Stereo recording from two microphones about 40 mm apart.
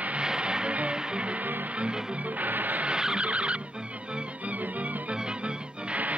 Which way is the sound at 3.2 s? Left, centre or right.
Right.